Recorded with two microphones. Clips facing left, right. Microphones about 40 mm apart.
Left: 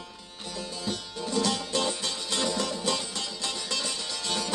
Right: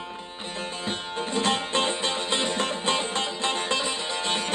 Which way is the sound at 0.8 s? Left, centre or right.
Right.